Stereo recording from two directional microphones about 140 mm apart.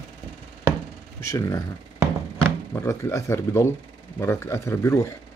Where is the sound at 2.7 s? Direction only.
20° left (ahead or behind).